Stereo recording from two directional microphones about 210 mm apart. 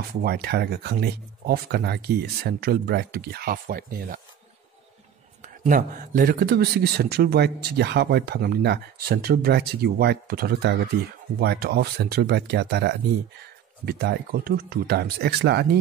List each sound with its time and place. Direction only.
0.2 s speech: 50° right (ahead or behind)
5.4 s speech: 40° right (ahead or behind)